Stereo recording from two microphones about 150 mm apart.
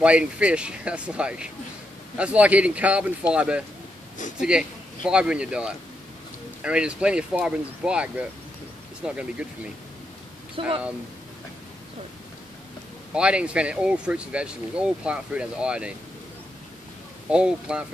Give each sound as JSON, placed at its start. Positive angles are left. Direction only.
{"t": 0.0, "sound": "speech", "side_deg": -10}
{"t": 10.6, "sound": "speech", "side_deg": -35}
{"t": 13.1, "sound": "speech", "side_deg": -5}
{"t": 17.3, "sound": "speech", "side_deg": -5}